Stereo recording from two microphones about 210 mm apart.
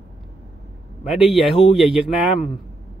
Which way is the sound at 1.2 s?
Centre (ahead or behind).